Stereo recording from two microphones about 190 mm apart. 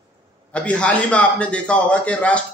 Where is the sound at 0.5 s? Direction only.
5° left (ahead or behind).